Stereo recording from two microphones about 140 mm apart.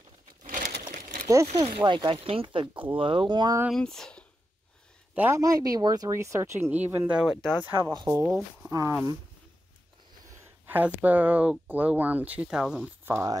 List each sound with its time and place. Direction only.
0.4 s crumpling: 65° right (ahead or behind)
1.2 s speech: 25° right (ahead or behind)
1.9 s speech: 35° right (ahead or behind)
3.7 s speech: 5° left (ahead or behind)
5.1 s speech: 10° right (ahead or behind)
5.4 s speech: 25° right (ahead or behind); by 7.3 s 10° right (ahead or behind)
7.8 s speech: 30° right (ahead or behind)
10.3 s speech: 10° right (ahead or behind)